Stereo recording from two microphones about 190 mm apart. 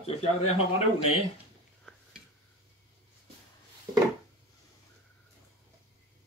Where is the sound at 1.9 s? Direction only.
5° right (ahead or behind).